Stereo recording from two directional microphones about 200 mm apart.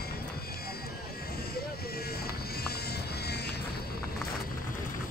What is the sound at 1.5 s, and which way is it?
Music, 50° left (ahead or behind).